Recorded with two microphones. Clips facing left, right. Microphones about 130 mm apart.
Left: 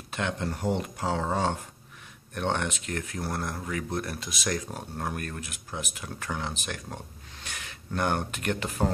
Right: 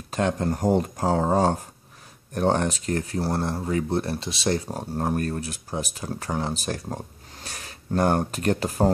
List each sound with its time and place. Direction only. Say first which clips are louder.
0.1 s speech: right 7 dB; 40° right (ahead or behind)